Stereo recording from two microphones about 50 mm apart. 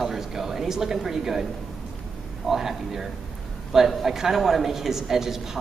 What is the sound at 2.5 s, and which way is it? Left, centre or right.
A woman's voice, centre.